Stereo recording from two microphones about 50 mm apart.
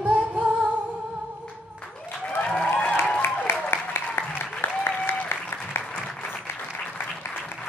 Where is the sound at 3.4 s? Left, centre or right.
Left.